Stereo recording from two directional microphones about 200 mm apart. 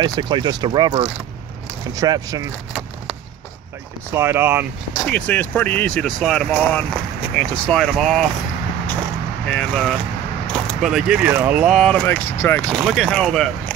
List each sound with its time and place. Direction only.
0.0 s speech: 20° right (ahead or behind)
4.1 s speech: 10° right (ahead or behind)
5.0 s speech: 10° left (ahead or behind)
9.5 s speech: 5° left (ahead or behind)
12.7 s speech: centre (ahead or behind)